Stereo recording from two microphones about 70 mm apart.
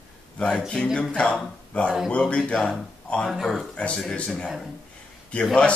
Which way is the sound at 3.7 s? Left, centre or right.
Centre.